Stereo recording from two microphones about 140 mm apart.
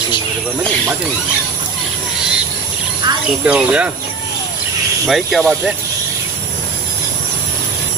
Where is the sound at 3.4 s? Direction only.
10° right (ahead or behind).